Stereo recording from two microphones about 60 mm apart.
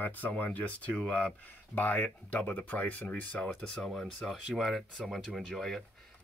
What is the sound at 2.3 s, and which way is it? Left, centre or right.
Speech, left.